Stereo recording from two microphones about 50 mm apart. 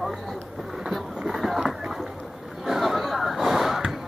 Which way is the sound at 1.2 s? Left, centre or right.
Centre.